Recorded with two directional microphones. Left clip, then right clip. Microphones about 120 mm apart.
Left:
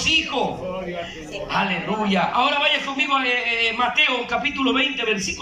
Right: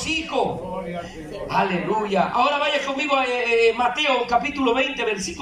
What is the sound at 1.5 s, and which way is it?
A man's voice, 45° right (ahead or behind).